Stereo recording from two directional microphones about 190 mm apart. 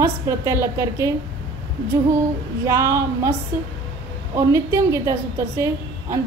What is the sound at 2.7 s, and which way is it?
Speech, 15° right (ahead or behind).